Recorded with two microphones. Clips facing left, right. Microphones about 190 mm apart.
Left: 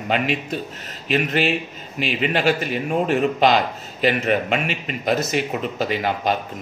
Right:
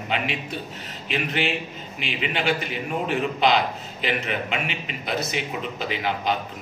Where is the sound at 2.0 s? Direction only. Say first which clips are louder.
Left 7 dB; 40° left (ahead or behind).